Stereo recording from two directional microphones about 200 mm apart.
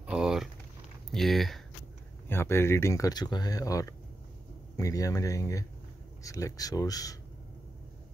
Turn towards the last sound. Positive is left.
turn(degrees=15)  # may be behind; listen again after turning